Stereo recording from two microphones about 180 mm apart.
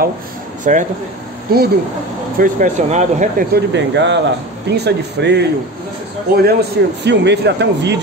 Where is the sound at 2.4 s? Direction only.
45° right (ahead or behind).